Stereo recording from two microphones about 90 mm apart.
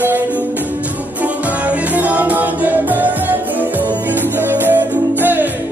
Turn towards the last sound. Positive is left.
turn(degrees=-20)  # may be behind; listen again after turning